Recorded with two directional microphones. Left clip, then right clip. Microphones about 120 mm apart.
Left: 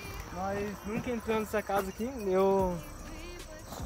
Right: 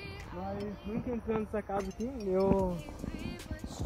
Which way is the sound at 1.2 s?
20° left (ahead or behind).